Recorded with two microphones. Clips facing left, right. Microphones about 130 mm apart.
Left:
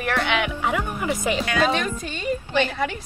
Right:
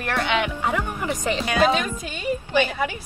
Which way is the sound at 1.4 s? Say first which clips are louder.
Right 4 dB; 15° right (ahead or behind).